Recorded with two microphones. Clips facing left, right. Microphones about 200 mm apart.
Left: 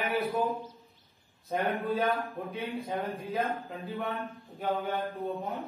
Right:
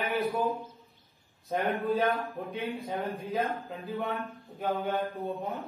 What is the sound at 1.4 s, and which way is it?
A man's voice, centre (ahead or behind).